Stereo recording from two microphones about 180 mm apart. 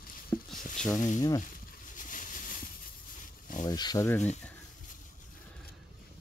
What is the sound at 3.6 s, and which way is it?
Speech, 20° left (ahead or behind).